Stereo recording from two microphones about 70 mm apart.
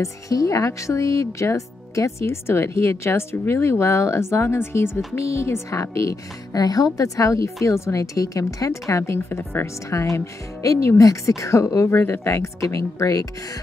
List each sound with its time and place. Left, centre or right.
0.0 s speech: left
6.5 s a woman's voice: left
11.9 s speech: left